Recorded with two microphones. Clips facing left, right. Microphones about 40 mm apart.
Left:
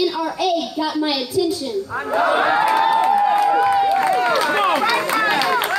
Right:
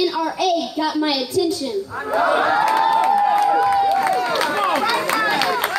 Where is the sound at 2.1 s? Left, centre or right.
Centre.